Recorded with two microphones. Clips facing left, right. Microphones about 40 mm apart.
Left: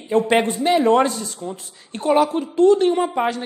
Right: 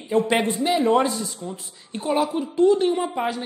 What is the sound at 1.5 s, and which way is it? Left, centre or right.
Speech, left.